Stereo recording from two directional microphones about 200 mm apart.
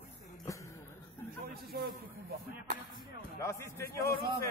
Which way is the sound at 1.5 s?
50° right (ahead or behind).